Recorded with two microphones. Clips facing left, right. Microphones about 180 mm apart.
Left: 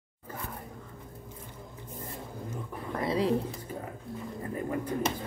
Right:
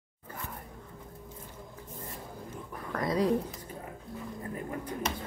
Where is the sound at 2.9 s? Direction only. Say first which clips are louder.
Even; 30° left (ahead or behind).